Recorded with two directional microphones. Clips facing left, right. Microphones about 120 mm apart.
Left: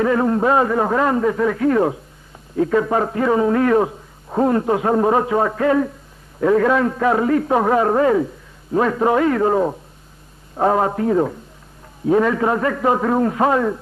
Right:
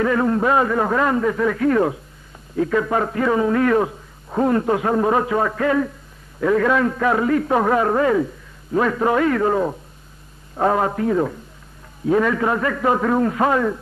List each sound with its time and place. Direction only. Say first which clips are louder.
0.0 s a man's voice: left 1 dB; 25° left (ahead or behind)